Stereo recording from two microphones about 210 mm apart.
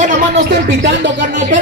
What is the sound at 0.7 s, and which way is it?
Music, 55° right (ahead or behind).